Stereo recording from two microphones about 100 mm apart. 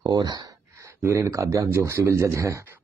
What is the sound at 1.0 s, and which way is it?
Speech, 25° right (ahead or behind).